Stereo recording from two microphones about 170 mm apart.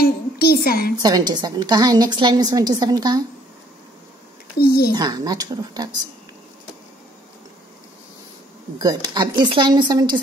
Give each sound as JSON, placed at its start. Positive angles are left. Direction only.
{"t": 0.0, "sound": "a woman's voice", "side_deg": 65}
{"t": 1.0, "sound": "a woman's voice", "side_deg": -25}
{"t": 4.6, "sound": "a woman's voice", "side_deg": 65}
{"t": 4.9, "sound": "a woman's voice", "side_deg": -25}
{"t": 8.7, "sound": "a woman's voice", "side_deg": -20}